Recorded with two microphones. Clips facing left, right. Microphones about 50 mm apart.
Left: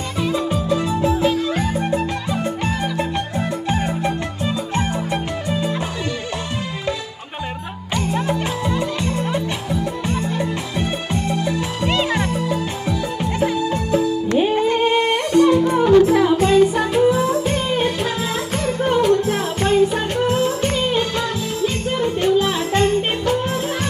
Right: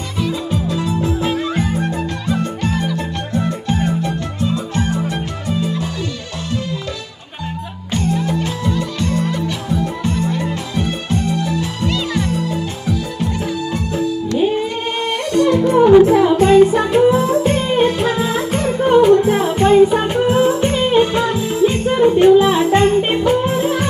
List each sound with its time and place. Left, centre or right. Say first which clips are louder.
0.2 s music: even; left
1.2 s music: left 1 dB; right
1.8 s music: left 1 dB; centre
7.9 s music: right 2 dB; left
15.8 s music: right 5 dB; centre